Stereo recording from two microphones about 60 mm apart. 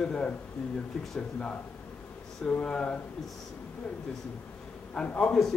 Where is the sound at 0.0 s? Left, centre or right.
Centre.